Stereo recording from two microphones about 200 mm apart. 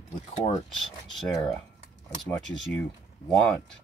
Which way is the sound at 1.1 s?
Centre (ahead or behind).